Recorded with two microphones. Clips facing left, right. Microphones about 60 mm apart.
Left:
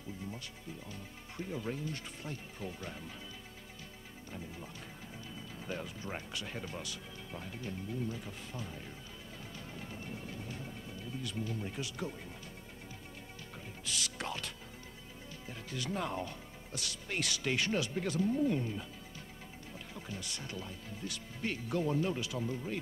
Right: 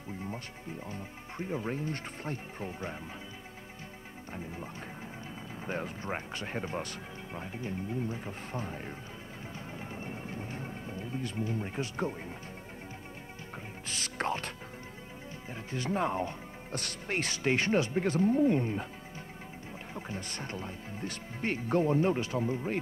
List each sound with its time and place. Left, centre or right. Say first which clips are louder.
0.2 s speech: right 5 dB; right
5.7 s speech: right 5 dB; right
7.3 s speech: right 5 dB; right
9.8 s music: right 3 dB; right
13.8 s music: right 6 dB; right
15.5 s speech: right 6 dB; right
16.7 s speech: right 5 dB; right
19.9 s speech: right 5 dB; right